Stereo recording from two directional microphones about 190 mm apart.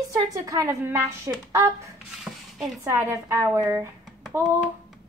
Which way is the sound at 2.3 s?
Centre (ahead or behind).